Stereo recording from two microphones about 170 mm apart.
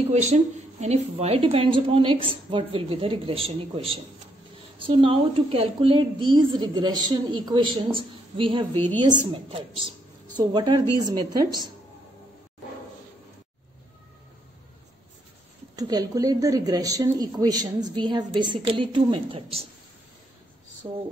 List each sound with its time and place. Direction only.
0.0 s a woman's voice: 40° right (ahead or behind)
8.7 s a woman's voice: 10° left (ahead or behind)
9.0 s a woman's voice: 30° right (ahead or behind)
15.7 s speech: 20° right (ahead or behind)
20.8 s speech: 20° right (ahead or behind)